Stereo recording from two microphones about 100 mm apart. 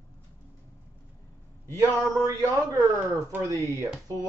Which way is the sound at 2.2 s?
35° right (ahead or behind).